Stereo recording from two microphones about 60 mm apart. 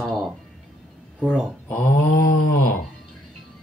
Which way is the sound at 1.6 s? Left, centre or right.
Left.